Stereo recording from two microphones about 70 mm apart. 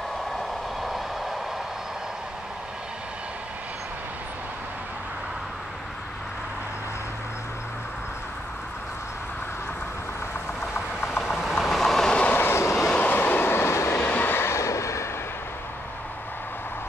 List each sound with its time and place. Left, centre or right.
0.7 s vehicle: centre
10.7 s vehicle: left
11.2 s vehicle: centre
11.6 s train: centre
12.1 s train: centre
12.4 s vehicle: left
12.7 s train: centre
13.1 s train: left
13.9 s train: left